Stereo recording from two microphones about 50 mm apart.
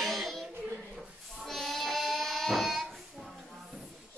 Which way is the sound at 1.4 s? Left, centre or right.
Centre.